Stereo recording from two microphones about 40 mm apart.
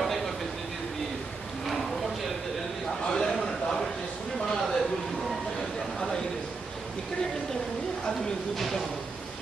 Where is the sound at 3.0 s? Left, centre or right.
Centre.